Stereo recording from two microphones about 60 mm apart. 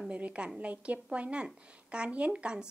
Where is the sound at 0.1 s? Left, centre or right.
Right.